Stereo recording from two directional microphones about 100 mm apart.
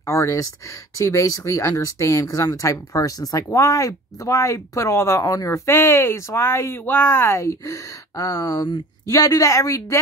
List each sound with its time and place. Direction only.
0.0 s speech: 30° left (ahead or behind)